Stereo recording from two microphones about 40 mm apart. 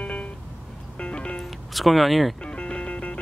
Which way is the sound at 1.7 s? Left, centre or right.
Centre.